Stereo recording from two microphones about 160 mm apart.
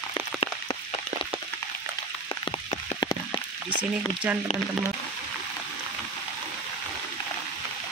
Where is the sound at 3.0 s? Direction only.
25° left (ahead or behind).